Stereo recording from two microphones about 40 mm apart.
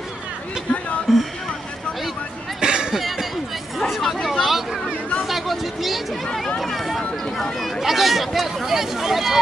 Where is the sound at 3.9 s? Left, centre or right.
Centre.